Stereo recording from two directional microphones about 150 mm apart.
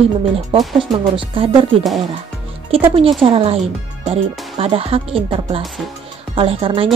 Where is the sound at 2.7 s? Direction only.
40° right (ahead or behind).